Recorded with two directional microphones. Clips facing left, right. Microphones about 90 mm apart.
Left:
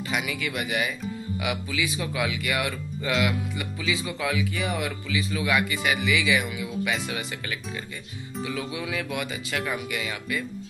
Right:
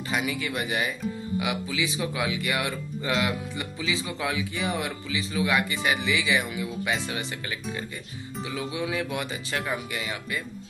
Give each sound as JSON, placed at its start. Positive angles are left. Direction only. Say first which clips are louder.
{"t": 0.1, "sound": "speech", "louder": "right 1 dB", "side_deg": -30}